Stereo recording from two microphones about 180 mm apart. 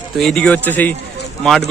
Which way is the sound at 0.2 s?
5° left (ahead or behind).